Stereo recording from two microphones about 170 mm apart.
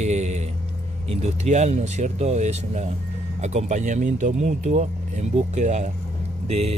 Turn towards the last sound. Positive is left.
turn(degrees=-40)  # may be behind; listen again after turning